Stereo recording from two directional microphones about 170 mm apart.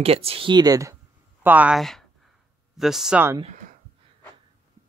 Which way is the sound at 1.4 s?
10° right (ahead or behind).